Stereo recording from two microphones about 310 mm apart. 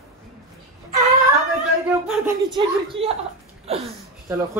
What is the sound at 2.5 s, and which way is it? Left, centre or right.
Speech, centre.